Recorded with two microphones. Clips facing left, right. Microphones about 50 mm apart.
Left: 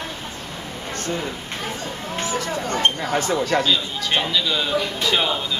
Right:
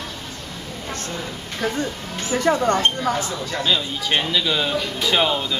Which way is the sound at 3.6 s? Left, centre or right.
Centre.